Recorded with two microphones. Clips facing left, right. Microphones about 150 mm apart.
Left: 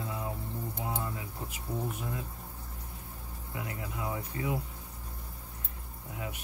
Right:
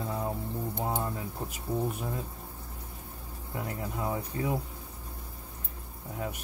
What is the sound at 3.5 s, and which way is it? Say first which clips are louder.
Speech: right 4 dB; 40° right (ahead or behind).